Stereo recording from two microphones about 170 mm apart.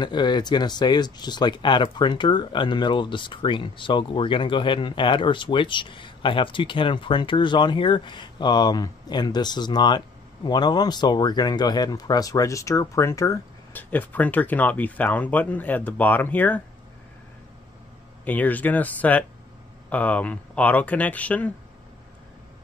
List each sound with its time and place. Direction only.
0.0 s speech: 25° left (ahead or behind); by 16.6 s 10° left (ahead or behind)
18.2 s speech: 10° left (ahead or behind)